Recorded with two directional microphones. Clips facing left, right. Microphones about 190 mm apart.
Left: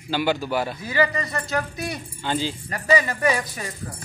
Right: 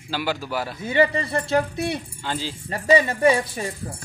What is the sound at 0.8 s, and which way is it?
Speech, 25° right (ahead or behind).